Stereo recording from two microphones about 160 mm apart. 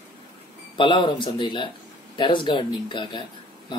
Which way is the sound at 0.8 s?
30° left (ahead or behind).